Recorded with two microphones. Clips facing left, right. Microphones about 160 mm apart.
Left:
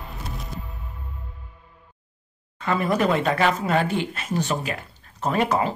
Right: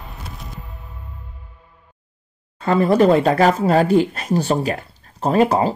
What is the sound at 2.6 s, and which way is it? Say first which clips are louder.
Speech: right 8 dB; 30° right (ahead or behind).